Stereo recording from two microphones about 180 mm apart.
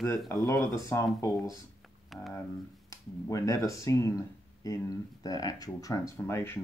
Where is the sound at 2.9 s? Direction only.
15° left (ahead or behind).